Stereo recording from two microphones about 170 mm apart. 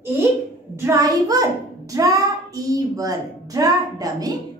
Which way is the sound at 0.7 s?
20° right (ahead or behind).